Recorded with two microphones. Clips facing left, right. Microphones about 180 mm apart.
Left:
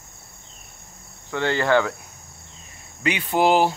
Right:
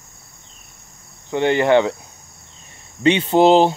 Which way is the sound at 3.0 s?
25° right (ahead or behind).